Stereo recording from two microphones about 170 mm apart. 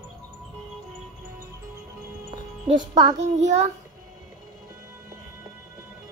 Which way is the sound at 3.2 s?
40° right (ahead or behind).